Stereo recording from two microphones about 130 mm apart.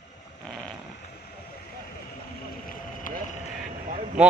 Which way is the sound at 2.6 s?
90° left.